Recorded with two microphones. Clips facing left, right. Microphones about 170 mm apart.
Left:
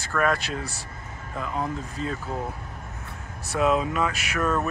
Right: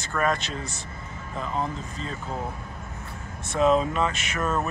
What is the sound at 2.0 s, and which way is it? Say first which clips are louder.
Speech: left 6 dB; 50° left (ahead or behind).